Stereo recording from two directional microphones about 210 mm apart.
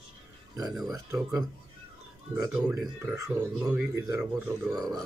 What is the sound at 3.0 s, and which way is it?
A man's voice, 10° right (ahead or behind).